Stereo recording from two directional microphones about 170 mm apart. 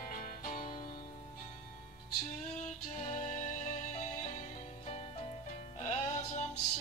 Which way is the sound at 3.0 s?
45° left (ahead or behind).